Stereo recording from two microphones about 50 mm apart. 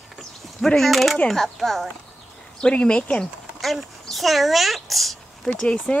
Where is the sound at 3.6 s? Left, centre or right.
Centre.